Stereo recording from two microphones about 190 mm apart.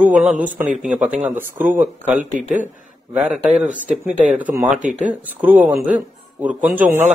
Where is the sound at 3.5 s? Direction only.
40° right (ahead or behind).